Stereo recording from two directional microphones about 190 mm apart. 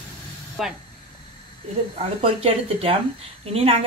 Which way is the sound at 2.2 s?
30° right (ahead or behind).